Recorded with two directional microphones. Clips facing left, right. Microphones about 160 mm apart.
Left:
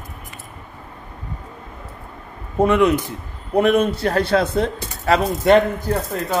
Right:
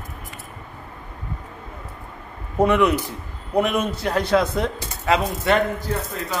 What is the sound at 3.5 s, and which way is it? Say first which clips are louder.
Speech: left 5 dB; 30° left (ahead or behind).